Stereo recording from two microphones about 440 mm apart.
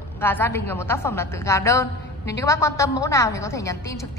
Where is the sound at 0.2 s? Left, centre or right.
Centre.